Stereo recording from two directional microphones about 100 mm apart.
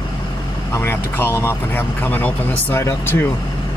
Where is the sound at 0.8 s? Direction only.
20° left (ahead or behind).